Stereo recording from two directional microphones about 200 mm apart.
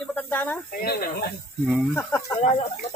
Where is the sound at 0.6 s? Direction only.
50° left (ahead or behind).